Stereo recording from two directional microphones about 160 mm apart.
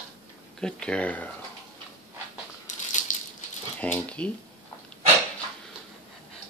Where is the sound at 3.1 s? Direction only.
55° left (ahead or behind).